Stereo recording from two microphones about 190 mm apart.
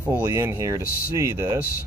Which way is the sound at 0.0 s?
10° right (ahead or behind).